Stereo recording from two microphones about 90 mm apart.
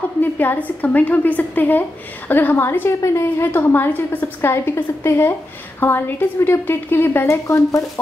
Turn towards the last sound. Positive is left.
turn(degrees=35)  # may be behind; listen again after turning